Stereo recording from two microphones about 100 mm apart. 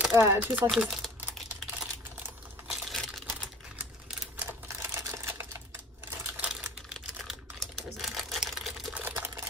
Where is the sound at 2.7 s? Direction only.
Centre (ahead or behind).